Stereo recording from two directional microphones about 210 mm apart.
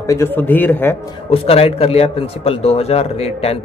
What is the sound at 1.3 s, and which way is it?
Speech, 30° left (ahead or behind).